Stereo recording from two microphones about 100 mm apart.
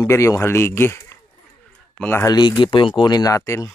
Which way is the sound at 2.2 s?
45° left (ahead or behind).